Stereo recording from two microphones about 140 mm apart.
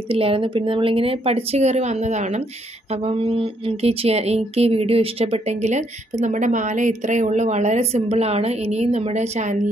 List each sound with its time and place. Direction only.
0.1 s speech: 40° right (ahead or behind)
2.9 s speech: 45° right (ahead or behind)